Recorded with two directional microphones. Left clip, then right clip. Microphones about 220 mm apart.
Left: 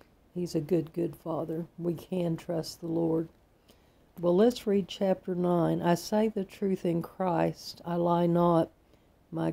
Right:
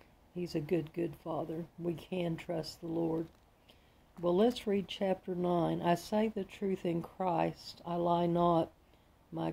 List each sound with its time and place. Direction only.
0.4 s speech: 20° left (ahead or behind)
4.2 s speech: 20° left (ahead or behind)